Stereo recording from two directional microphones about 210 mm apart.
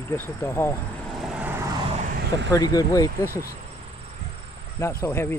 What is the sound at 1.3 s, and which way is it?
Vehicle, 10° right (ahead or behind).